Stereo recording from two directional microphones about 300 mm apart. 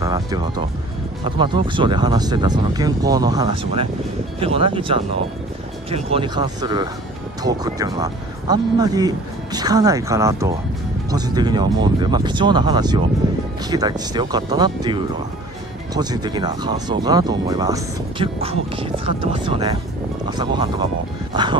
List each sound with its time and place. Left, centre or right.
0.0 s speech: centre